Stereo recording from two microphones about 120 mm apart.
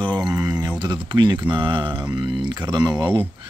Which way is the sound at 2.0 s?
10° right (ahead or behind).